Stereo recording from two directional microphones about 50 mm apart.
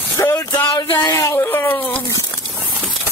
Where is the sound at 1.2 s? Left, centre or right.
Left.